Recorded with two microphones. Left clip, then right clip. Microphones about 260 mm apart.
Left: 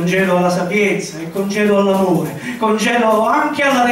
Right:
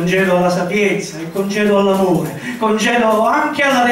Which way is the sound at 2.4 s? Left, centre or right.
Centre.